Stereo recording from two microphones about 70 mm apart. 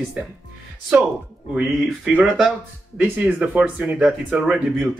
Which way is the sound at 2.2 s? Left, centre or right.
Centre.